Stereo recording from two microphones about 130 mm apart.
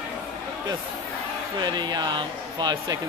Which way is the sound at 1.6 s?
35° right (ahead or behind).